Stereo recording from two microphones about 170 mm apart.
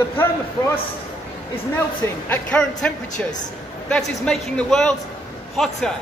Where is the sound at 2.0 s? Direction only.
10° left (ahead or behind).